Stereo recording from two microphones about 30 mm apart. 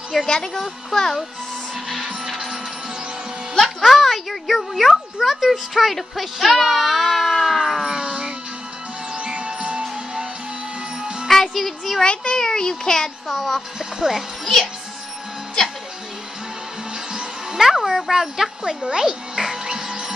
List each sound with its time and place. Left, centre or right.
0.1 s speech: centre
3.5 s a child's voice: centre
7.8 s music: right
11.0 s music: right
11.2 s music: centre
12.0 s a child's voice: left
13.3 s speech: centre
13.7 s speech: centre
17.1 s music: right
17.6 s a sound: centre
18.9 s music: centre